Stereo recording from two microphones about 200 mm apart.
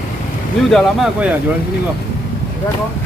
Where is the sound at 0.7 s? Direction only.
Centre (ahead or behind).